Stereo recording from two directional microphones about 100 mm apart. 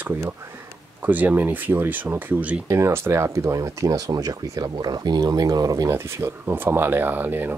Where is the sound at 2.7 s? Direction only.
30° right (ahead or behind).